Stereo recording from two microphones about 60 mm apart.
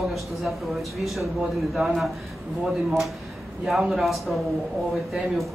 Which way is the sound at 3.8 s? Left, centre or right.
Centre.